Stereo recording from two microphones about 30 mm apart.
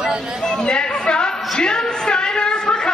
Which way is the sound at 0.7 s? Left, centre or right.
Left.